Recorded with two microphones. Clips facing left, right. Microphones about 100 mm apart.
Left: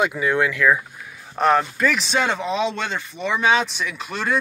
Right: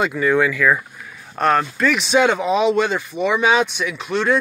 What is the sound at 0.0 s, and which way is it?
Speech, 5° left (ahead or behind).